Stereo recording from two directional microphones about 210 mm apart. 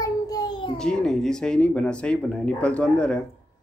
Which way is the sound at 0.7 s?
5° left (ahead or behind).